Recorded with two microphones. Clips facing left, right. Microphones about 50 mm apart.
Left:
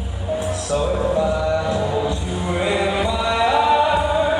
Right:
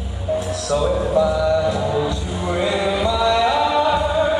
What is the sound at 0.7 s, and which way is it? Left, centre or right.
Music, left.